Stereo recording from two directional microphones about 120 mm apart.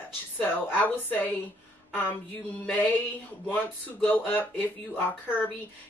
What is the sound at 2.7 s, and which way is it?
A woman's voice, 15° left (ahead or behind).